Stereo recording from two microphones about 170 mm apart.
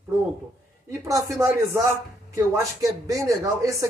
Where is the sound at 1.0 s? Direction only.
20° right (ahead or behind).